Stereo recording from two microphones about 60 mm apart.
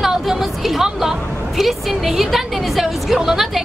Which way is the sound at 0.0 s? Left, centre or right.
Centre.